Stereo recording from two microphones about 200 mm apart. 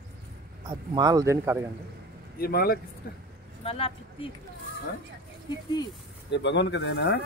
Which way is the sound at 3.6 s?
30° left (ahead or behind).